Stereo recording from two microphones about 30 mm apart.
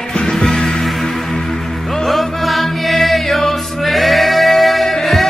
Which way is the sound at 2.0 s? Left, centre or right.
Centre.